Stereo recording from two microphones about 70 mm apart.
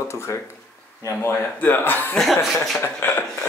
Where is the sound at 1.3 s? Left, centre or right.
Left.